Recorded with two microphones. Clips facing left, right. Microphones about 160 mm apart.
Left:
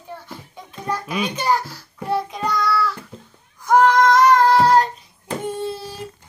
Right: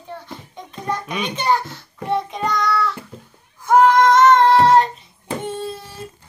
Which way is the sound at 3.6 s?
Centre (ahead or behind).